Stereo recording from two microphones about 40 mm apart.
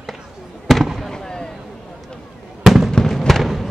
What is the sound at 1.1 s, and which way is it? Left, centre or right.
Fireworks, centre.